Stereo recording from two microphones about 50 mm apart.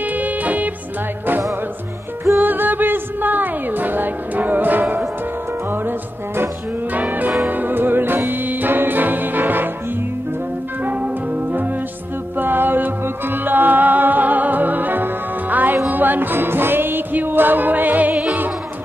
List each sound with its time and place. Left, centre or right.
0.0 s music: right
2.4 s music: right
5.7 s music: right
6.9 s music: right
10.8 s music: right
12.4 s music: right